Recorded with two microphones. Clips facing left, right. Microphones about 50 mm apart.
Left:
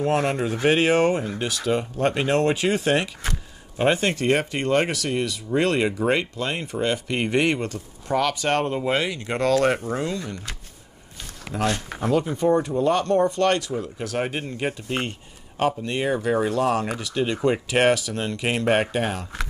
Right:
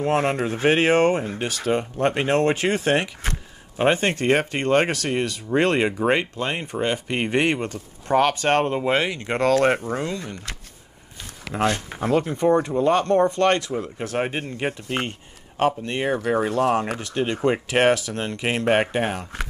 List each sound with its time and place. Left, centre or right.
0.0 s speech: right
7.7 s speech: right
8.7 s speech: right
11.5 s speech: right
12.0 s speech: right
18.7 s speech: right